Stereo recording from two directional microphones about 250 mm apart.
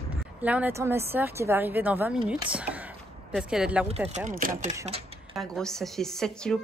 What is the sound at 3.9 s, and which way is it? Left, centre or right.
Speech, right.